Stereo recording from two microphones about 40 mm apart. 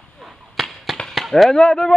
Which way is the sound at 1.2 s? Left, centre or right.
Centre.